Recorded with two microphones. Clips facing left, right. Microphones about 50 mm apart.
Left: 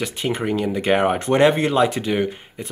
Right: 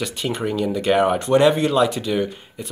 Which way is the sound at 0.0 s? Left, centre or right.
Left.